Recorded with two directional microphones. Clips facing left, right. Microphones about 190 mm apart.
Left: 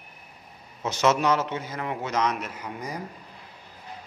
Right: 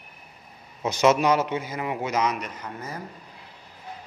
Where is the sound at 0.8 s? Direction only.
15° right (ahead or behind); by 3.0 s 10° left (ahead or behind).